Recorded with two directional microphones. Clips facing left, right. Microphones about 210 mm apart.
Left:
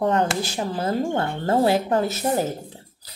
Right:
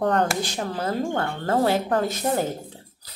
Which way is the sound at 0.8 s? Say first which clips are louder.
Left 2 dB; 25° left (ahead or behind).